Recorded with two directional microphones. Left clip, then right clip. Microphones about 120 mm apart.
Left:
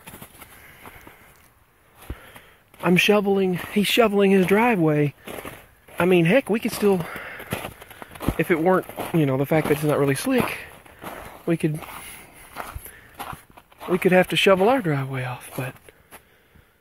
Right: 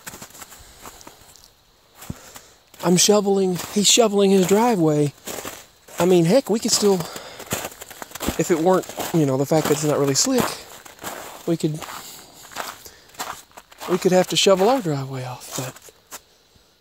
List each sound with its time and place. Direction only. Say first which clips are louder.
2.8 s speech: right 1 dB; 30° right (ahead or behind)
5.3 s a sound: right 3 dB; 10° right (ahead or behind)
5.9 s speech: right 2 dB; 35° right (ahead or behind)
7.0 s speech: even; 15° right (ahead or behind)
7.4 s a sound: right 3 dB; 20° right (ahead or behind)
8.5 s speech: right 3 dB; 10° right (ahead or behind)
9.2 s speech: right 2 dB; 40° right (ahead or behind)
9.8 s speech: right 1 dB; 10° right (ahead or behind)
10.1 s speech: right 2 dB; 25° right (ahead or behind)
11.0 s walk: right 3 dB; 10° right (ahead or behind)
11.4 s speech: right 1 dB; 25° right (ahead or behind)
12.8 s walk: right 3 dB; 25° right (ahead or behind); by 15.7 s 10° right (ahead or behind)